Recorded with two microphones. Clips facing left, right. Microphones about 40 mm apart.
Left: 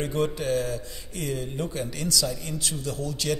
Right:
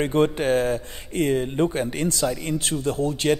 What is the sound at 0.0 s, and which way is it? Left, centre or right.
Speech, right.